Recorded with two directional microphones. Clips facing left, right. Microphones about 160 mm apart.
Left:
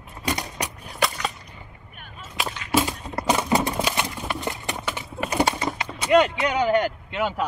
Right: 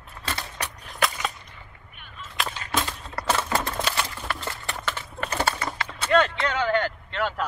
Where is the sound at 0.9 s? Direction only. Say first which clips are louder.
Left 1 dB; centre (ahead or behind).